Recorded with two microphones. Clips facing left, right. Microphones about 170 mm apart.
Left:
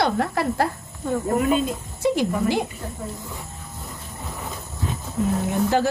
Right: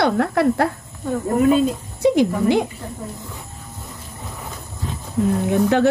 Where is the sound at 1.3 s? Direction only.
30° right (ahead or behind).